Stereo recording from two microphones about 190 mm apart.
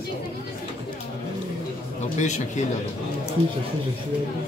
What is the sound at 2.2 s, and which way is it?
Speech, 40° left (ahead or behind).